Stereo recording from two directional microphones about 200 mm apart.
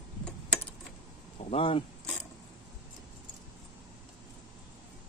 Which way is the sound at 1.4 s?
30° left (ahead or behind).